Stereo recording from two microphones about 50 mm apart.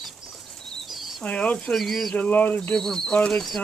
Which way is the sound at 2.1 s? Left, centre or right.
Left.